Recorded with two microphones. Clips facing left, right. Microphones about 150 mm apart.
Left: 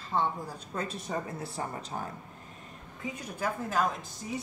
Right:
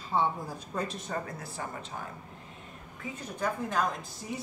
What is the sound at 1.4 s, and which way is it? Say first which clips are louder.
Speech: left 2 dB; 30° left (ahead or behind).